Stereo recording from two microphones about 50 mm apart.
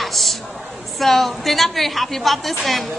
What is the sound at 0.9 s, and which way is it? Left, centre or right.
A woman's voice, centre.